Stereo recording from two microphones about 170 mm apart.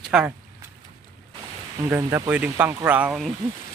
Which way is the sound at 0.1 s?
Centre (ahead or behind).